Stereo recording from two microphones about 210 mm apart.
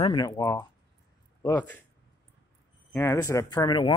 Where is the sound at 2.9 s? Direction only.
15° left (ahead or behind).